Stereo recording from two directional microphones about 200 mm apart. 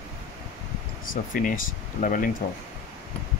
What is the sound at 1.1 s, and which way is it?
Speech, 45° left (ahead or behind).